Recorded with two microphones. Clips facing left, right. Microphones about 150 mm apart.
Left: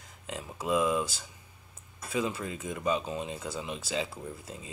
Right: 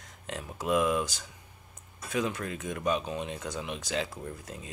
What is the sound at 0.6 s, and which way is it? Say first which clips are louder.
Speech: right 1 dB; 20° left (ahead or behind).